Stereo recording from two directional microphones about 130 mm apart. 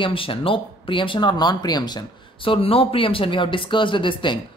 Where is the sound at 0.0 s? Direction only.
45° left (ahead or behind).